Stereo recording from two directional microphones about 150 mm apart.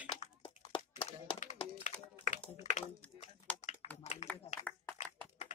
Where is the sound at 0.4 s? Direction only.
35° left (ahead or behind).